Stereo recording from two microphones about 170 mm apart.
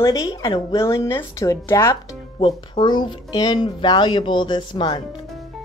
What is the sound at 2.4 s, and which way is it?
Speech, 30° left (ahead or behind).